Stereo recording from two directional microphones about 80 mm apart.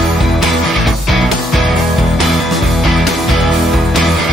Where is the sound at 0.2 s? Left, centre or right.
Centre.